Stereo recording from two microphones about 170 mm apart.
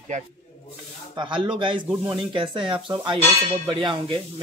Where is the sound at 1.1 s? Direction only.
30° right (ahead or behind).